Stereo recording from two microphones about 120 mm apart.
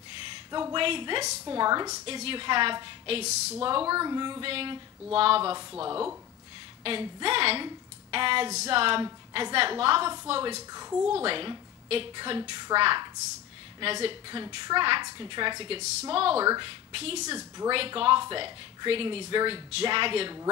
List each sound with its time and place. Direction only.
0.5 s a woman's voice: 35° right (ahead or behind)
2.0 s speech: 50° right (ahead or behind)
3.6 s speech: 45° right (ahead or behind)
3.9 s a woman's voice: 30° right (ahead or behind)
4.5 s speech: 50° right (ahead or behind)
6.8 s a woman's voice: 45° right (ahead or behind)
10.9 s speech: 15° right (ahead or behind)
11.2 s a woman's voice: 45° right (ahead or behind)
15.8 s speech: 60° right (ahead or behind)
16.4 s speech: 45° right (ahead or behind); by 17.4 s 60° right (ahead or behind)
17.6 s speech: 45° right (ahead or behind)